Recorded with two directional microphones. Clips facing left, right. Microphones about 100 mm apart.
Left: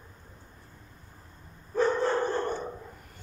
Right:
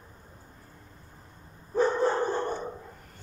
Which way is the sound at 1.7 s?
15° right (ahead or behind).